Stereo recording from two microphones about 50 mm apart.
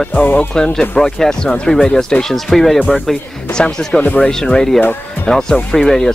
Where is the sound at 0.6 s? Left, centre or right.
Centre.